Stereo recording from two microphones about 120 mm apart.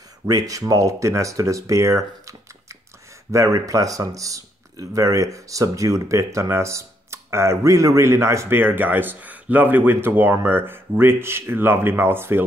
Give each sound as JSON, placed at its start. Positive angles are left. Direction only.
{"t": 0.3, "sound": "speech", "side_deg": -30}